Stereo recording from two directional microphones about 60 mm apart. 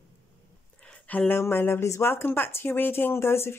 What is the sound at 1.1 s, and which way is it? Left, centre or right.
Speech, left.